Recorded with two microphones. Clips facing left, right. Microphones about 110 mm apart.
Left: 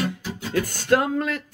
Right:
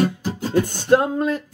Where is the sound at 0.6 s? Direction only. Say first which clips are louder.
Right 4 dB; 20° right (ahead or behind).